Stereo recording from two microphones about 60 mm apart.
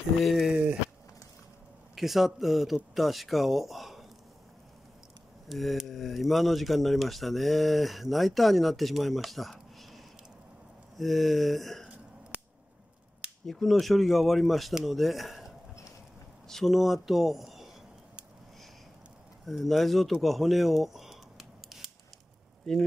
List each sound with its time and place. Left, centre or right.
0.2 s speech: centre
0.5 s speech: centre
2.0 s speech: centre
5.5 s speech: centre
12.3 s scissors: left
13.5 s speech: centre
16.4 s a sound: centre
16.7 s speech: centre
19.4 s speech: centre
22.7 s speech: centre